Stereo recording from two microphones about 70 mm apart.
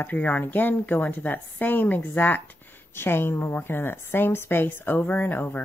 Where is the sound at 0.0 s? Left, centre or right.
Left.